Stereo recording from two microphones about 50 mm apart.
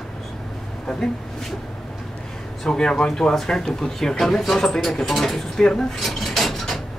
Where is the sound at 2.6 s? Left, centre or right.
Centre.